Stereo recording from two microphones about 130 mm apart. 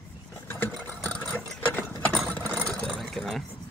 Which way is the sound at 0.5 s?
15° left (ahead or behind).